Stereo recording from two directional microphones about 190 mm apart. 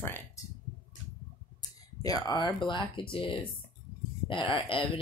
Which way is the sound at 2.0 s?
20° left (ahead or behind).